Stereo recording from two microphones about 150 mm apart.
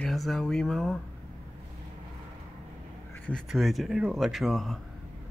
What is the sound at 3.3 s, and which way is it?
Speech, centre (ahead or behind).